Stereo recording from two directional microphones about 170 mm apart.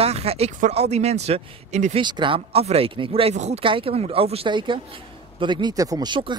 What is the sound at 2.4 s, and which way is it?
Speech, 40° right (ahead or behind).